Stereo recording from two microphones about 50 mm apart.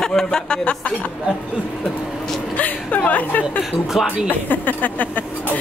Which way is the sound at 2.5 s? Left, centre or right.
Left.